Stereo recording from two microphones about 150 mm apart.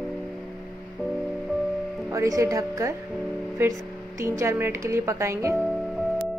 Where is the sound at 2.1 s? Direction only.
20° right (ahead or behind).